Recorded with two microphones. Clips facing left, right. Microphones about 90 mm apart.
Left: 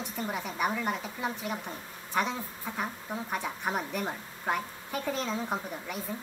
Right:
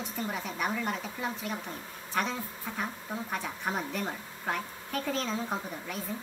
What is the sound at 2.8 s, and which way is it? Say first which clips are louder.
Speech: left 1 dB; 15° left (ahead or behind).